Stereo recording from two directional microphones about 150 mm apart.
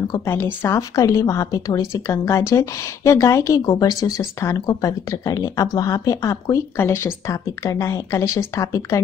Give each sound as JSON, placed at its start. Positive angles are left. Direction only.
{"t": 0.1, "sound": "speech", "side_deg": 15}